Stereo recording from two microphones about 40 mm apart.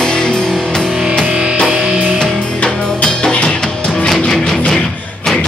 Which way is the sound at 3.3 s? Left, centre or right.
Left.